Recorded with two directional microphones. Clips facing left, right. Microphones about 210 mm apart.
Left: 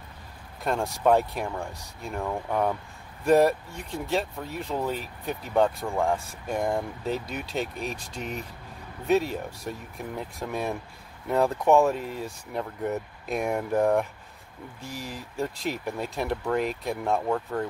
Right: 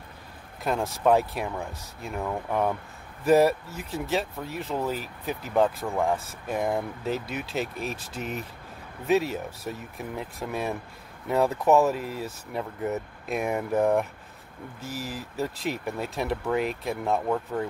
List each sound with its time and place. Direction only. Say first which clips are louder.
0.7 s speech: even; centre (ahead or behind)